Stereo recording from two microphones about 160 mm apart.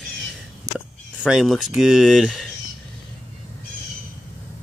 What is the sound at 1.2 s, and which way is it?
Speech, 5° right (ahead or behind).